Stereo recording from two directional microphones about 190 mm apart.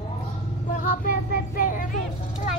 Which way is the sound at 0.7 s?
50° left (ahead or behind).